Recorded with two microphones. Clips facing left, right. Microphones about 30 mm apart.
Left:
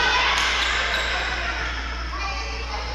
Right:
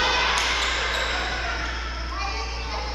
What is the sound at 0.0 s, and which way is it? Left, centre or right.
Basketball bounce, centre.